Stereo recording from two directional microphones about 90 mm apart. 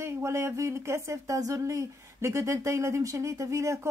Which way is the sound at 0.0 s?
30° right (ahead or behind).